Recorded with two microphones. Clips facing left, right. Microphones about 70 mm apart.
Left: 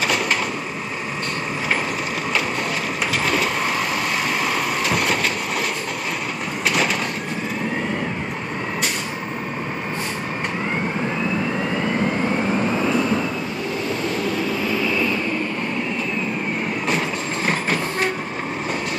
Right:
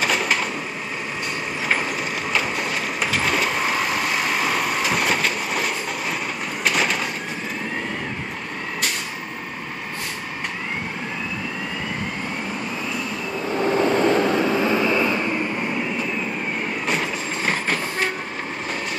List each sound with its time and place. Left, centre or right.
0.0 s a sound: centre
3.1 s vehicle: centre
6.6 s a sound: centre
12.7 s vehicle: left
13.7 s vehicle: right; by 15.4 s centre
17.5 s train: centre